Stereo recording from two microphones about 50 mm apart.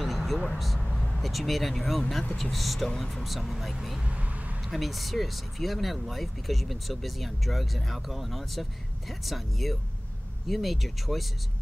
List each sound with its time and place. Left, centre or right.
0.0 s vehicle: centre
1.2 s speech: centre
4.0 s a sound: right
4.6 s speech: centre